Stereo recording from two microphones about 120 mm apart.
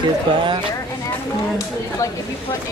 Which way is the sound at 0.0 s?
40° right (ahead or behind).